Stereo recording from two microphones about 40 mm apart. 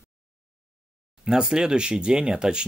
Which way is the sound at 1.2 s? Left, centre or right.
Centre.